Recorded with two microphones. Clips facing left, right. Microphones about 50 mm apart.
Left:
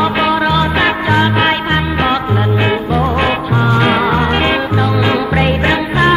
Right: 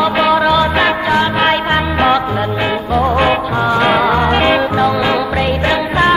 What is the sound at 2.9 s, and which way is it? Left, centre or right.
Music, centre.